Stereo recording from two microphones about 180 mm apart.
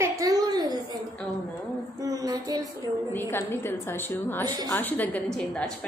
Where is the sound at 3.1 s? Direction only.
15° left (ahead or behind).